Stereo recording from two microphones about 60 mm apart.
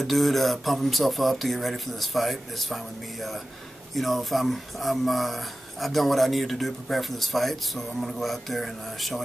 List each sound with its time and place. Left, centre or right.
0.0 s speech: centre